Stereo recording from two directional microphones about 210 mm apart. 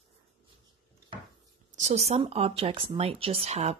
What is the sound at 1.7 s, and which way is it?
Speech, 30° right (ahead or behind).